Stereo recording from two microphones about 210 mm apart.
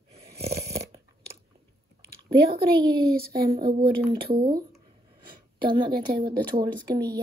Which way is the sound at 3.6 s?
45° right (ahead or behind).